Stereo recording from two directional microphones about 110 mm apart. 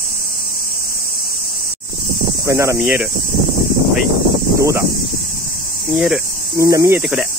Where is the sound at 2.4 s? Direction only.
25° right (ahead or behind).